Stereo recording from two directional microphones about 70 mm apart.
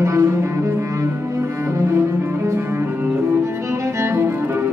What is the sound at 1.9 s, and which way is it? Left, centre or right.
Cello, right.